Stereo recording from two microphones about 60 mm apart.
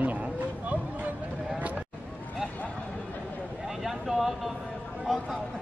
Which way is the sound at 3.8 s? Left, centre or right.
Centre.